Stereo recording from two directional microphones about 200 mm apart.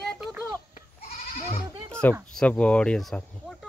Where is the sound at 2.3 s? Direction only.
5° left (ahead or behind).